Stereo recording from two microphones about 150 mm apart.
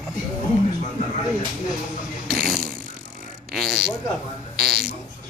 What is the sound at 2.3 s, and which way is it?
Ratchet, centre (ahead or behind).